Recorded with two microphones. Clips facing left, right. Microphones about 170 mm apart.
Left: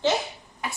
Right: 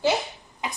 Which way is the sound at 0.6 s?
15° right (ahead or behind).